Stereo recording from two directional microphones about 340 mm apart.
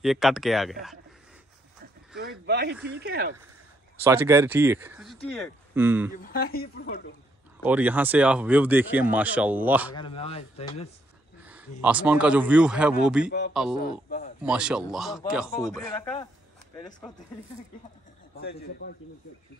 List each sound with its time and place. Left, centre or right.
0.0 s speech: centre
2.1 s speech: right
3.9 s speech: centre
6.2 s speech: left
7.6 s speech: centre
9.9 s speech: centre
11.4 s speech: centre
18.4 s speech: left